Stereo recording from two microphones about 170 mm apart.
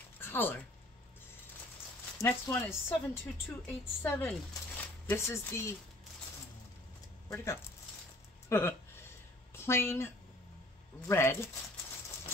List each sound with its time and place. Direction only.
0.2 s a sound: 10° left (ahead or behind)
2.2 s speech: 15° left (ahead or behind)
7.2 s speech: 15° left (ahead or behind)